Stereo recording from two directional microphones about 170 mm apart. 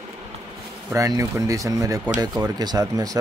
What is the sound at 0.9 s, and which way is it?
Speech, 20° right (ahead or behind).